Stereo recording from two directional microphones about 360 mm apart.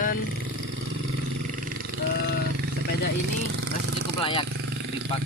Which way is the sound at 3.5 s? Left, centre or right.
Right.